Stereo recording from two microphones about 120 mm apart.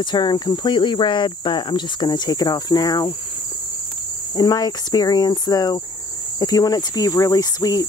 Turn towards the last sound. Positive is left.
turn(degrees=35)  # may be behind; listen again after turning